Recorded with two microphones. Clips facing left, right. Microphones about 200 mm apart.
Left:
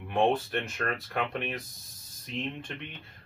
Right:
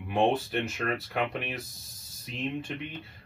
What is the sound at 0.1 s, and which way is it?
Speech, 5° right (ahead or behind).